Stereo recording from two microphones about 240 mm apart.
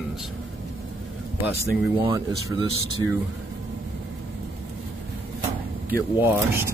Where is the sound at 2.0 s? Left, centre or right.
Centre.